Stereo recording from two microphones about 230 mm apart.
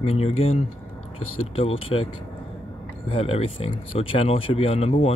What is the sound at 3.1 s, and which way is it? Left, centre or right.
Speech, left.